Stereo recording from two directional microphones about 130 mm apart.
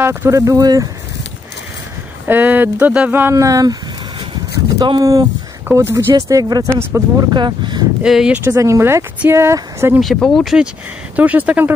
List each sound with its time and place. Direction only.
0.0 s speech: 20° right (ahead or behind)
2.2 s speech: 15° right (ahead or behind)
4.7 s speech: 30° right (ahead or behind)
7.2 s speech: 35° right (ahead or behind)
8.0 s speech: 5° right (ahead or behind)
8.5 s speech: 25° right (ahead or behind)
9.9 s speech: centre (ahead or behind)